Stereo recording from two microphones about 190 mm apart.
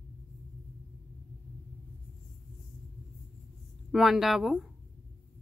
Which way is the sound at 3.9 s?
Centre (ahead or behind).